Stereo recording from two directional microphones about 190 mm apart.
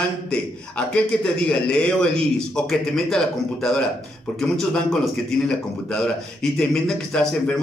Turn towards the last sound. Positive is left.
turn(degrees=5)  # may be behind; listen again after turning